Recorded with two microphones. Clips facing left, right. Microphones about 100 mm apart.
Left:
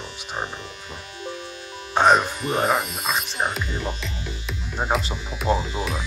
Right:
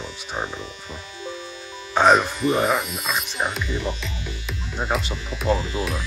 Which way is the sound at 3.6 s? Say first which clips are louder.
Right 2 dB; 40° left (ahead or behind).